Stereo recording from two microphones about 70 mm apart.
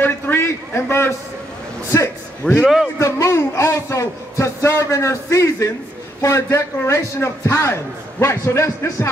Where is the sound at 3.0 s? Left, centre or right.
Left.